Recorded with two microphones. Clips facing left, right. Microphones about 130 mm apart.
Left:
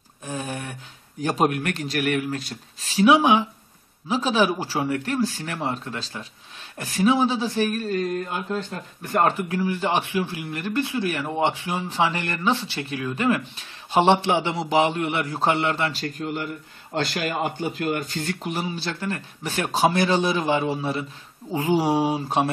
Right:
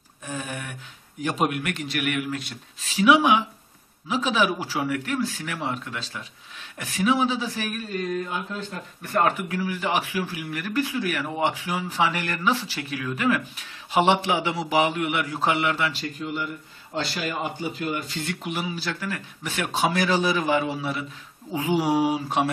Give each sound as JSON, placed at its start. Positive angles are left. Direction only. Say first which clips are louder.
{"t": 0.3, "sound": "a sound", "louder": "left 2 dB", "side_deg": 35}
{"t": 1.2, "sound": "speech", "louder": "left 3 dB", "side_deg": 40}
{"t": 9.0, "sound": "speech", "louder": "left 1 dB", "side_deg": 30}
{"t": 17.1, "sound": "speech", "louder": "left 3 dB", "side_deg": 55}